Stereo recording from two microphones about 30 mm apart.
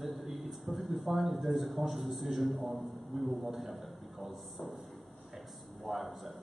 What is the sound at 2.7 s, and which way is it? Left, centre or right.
A man's voice, centre.